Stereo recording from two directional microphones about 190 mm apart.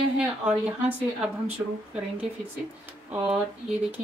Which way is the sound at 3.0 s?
10° right (ahead or behind).